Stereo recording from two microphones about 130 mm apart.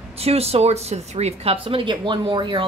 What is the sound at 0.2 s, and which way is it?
Speech, 50° right (ahead or behind).